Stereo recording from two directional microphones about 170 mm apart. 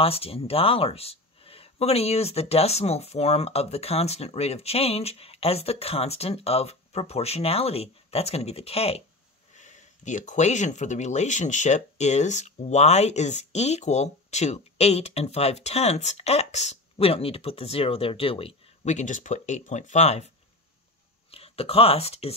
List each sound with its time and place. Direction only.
0.0 s speech: 35° left (ahead or behind)
21.3 s speech: 35° left (ahead or behind)